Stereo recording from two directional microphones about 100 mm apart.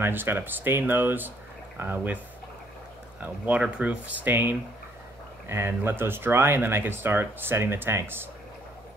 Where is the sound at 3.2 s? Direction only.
15° right (ahead or behind).